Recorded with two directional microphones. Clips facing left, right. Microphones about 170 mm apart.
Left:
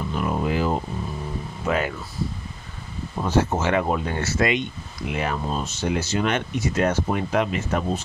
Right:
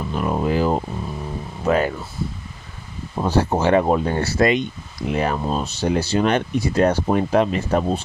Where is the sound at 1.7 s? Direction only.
40° right (ahead or behind).